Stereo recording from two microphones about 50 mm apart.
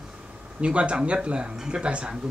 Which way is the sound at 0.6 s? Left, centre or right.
Right.